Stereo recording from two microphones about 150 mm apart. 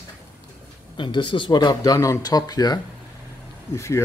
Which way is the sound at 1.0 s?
30° left (ahead or behind).